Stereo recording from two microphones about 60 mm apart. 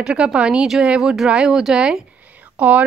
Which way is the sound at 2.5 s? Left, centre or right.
Right.